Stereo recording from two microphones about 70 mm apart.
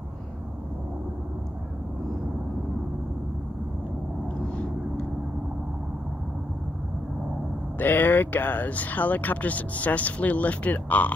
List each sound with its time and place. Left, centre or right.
7.7 s speech: left